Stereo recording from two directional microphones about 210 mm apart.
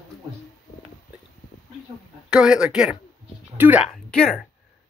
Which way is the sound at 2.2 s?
5° right (ahead or behind).